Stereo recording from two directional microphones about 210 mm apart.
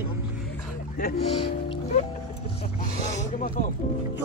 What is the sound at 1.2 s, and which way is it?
Speech, 30° left (ahead or behind).